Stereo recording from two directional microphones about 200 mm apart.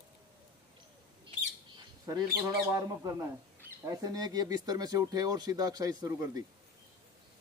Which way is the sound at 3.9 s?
20° right (ahead or behind).